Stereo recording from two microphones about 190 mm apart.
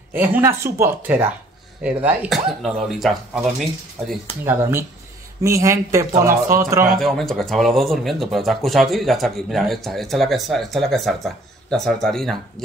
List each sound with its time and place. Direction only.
0.1 s speech: 10° right (ahead or behind)
4.5 s speech: 10° right (ahead or behind)
6.9 s speech: centre (ahead or behind)